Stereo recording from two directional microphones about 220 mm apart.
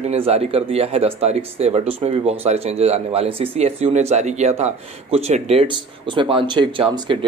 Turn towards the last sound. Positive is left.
turn(degrees=-20)  # may be behind; listen again after turning